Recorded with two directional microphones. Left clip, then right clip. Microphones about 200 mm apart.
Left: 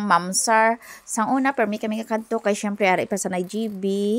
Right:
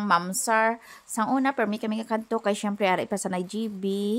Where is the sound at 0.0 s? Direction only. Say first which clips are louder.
Left 4 dB; 15° left (ahead or behind).